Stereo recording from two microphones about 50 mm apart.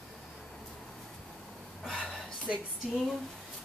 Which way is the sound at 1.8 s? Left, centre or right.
Centre.